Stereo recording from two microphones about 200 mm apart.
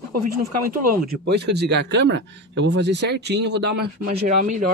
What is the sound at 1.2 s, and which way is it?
A man's voice, 55° right (ahead or behind).